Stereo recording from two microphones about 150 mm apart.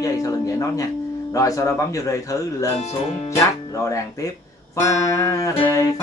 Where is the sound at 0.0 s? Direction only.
20° left (ahead or behind).